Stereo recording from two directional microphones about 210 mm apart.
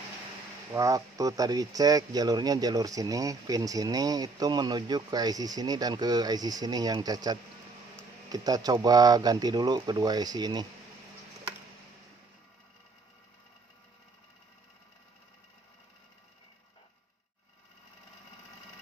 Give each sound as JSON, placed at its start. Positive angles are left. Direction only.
{"t": 0.7, "sound": "speech", "side_deg": -15}